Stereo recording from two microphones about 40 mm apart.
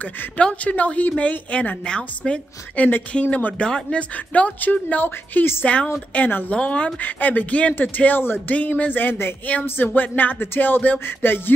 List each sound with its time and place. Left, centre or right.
0.4 s speech: left
1.9 s a woman's voice: left
3.6 s a woman's voice: left
4.3 s speech: left
5.0 s a woman's voice: left
6.5 s a woman's voice: left
7.0 s speech: left
10.4 s a woman's voice: left
11.2 s a sound: left